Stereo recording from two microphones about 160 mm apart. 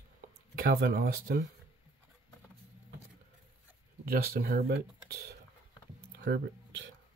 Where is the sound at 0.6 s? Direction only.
70° right (ahead or behind).